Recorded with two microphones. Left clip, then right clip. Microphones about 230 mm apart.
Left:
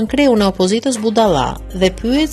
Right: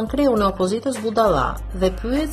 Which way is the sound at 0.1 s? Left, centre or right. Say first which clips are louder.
Left 5 dB; left.